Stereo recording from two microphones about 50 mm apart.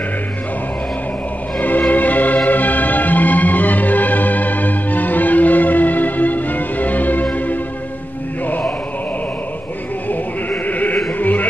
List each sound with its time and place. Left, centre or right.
1.6 s music: left
10.5 s sheep: left
11.1 s music: left